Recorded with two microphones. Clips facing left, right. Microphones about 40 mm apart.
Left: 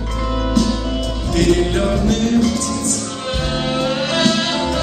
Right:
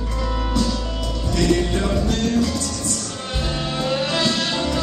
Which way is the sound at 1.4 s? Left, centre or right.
Left.